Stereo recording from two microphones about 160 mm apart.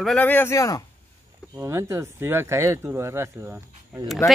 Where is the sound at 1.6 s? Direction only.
20° right (ahead or behind).